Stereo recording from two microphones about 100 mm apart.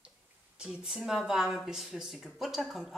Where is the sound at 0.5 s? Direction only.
10° right (ahead or behind).